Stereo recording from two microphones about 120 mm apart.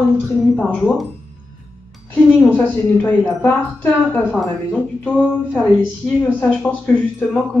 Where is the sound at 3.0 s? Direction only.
15° left (ahead or behind).